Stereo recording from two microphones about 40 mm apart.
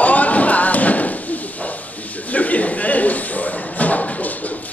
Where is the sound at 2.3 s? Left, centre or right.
Left.